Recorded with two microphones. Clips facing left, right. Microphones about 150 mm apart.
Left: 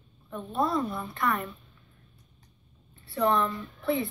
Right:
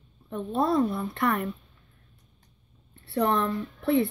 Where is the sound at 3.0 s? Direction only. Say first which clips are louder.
Right 1 dB; 65° right (ahead or behind).